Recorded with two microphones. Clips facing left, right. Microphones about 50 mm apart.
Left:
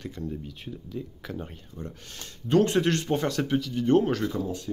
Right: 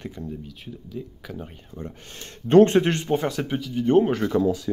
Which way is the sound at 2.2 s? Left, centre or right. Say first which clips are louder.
Right 8 dB; right.